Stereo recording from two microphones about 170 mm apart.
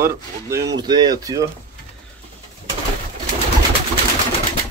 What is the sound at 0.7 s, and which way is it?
Speech, 25° right (ahead or behind).